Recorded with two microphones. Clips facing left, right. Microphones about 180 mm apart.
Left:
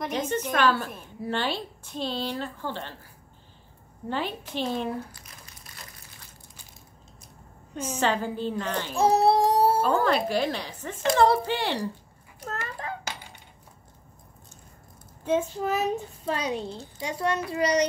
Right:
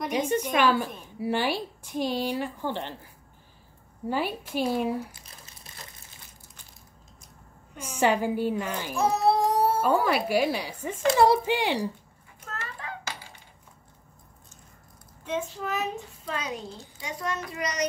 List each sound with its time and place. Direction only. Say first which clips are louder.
0.0 s a woman's voice: right 2 dB; 5° right (ahead or behind)
4.1 s a woman's voice: right 2 dB; 10° right (ahead or behind)
5.2 s crumpling: left 1 dB; 30° right (ahead or behind)
7.7 s a woman's voice: right 2 dB; 10° right (ahead or behind)
8.9 s a sound: left 3 dB; 30° left (ahead or behind)
9.8 s a woman's voice: left 1 dB; 10° right (ahead or behind)
12.4 s a sound: left 4 dB; 35° left (ahead or behind)
15.2 s a child's voice: left 6 dB; 35° left (ahead or behind)